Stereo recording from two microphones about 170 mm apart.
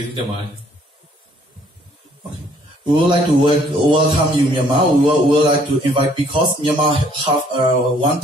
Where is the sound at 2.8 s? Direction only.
30° right (ahead or behind).